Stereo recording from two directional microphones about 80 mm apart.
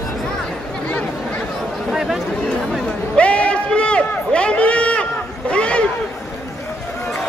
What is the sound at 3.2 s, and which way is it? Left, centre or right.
Run, centre.